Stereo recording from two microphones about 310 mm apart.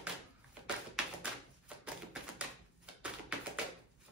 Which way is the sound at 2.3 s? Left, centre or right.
Centre.